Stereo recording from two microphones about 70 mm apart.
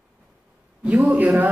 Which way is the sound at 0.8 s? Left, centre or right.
Centre.